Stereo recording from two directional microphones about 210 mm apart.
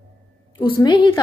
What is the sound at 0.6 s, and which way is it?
Speech, 25° left (ahead or behind).